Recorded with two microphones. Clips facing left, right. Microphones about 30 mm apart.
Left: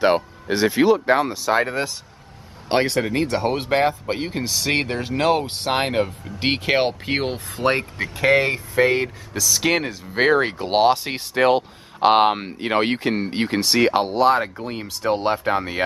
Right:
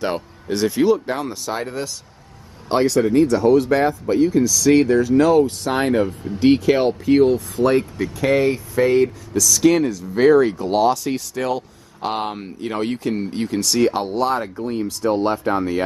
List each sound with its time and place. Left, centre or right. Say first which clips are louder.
0.0 s speech: left 6 dB; left
3.0 s speech: right 5 dB; left
8.2 s speech: even; left